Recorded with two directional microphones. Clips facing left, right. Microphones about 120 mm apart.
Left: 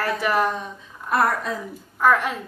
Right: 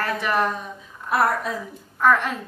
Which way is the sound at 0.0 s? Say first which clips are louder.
Left 1 dB; centre (ahead or behind).